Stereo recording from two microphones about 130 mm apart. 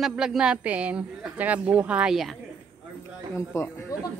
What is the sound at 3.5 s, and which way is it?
Speech, 25° left (ahead or behind).